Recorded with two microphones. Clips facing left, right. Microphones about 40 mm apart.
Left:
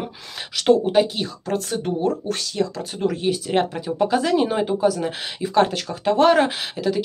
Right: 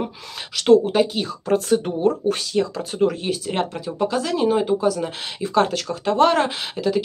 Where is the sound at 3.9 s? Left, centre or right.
Centre.